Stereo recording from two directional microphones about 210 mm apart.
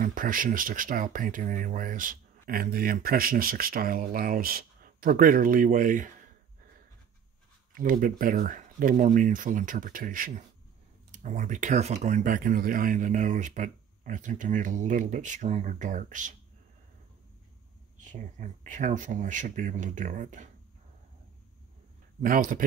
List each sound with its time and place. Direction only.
0.0 s speech: 40° right (ahead or behind)
7.7 s speech: 40° right (ahead or behind)
18.1 s speech: 35° right (ahead or behind)
22.2 s speech: 40° right (ahead or behind)